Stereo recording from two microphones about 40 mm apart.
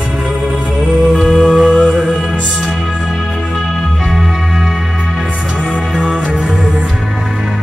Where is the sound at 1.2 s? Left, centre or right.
Centre.